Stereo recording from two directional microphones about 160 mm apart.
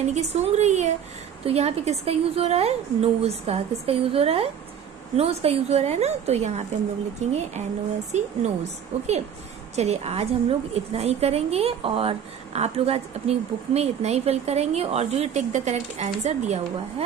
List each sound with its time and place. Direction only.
0.0 s a woman's voice: 45° right (ahead or behind)